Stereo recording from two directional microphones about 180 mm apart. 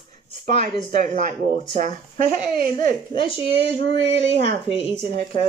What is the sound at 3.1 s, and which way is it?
Speech, 30° left (ahead or behind).